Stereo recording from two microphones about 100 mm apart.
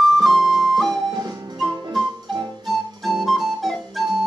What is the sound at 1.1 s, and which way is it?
Music, 45° right (ahead or behind).